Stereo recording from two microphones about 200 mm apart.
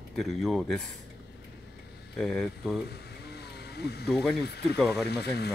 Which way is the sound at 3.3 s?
55° left (ahead or behind).